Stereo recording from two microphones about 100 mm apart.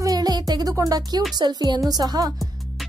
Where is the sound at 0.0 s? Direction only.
40° right (ahead or behind).